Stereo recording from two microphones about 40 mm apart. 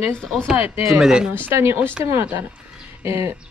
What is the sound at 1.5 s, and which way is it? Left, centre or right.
Speech, right.